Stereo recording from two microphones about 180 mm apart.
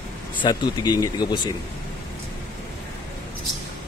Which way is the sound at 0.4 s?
25° left (ahead or behind).